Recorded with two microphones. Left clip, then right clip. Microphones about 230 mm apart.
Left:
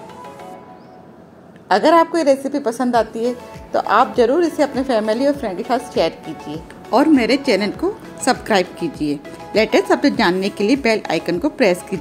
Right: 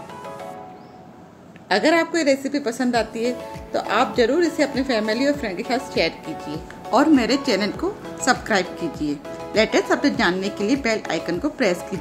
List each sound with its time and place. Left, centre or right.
2.0 s speech: centre